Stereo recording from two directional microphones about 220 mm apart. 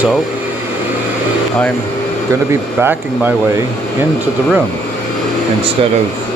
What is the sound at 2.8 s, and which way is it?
Speech, 10° right (ahead or behind).